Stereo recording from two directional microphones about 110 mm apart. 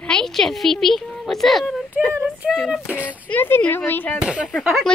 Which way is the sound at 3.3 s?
20° left (ahead or behind).